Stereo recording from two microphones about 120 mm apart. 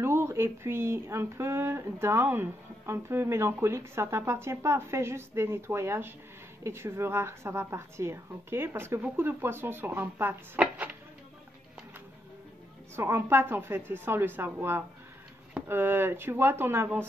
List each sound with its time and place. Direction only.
0.0 s speech: 20° right (ahead or behind)
12.9 s speech: 20° right (ahead or behind)